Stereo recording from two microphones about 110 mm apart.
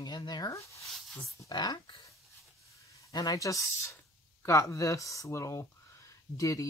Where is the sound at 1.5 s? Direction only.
40° left (ahead or behind).